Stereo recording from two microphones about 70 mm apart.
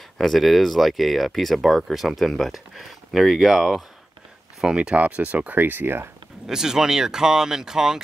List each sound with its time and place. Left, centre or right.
0.2 s speech: centre
4.7 s speech: centre
6.4 s speech: centre